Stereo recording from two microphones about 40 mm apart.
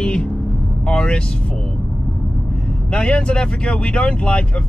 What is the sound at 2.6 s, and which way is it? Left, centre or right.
Speech, left.